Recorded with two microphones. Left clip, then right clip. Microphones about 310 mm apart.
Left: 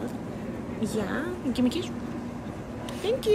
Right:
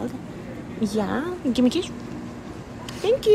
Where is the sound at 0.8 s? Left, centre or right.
Centre.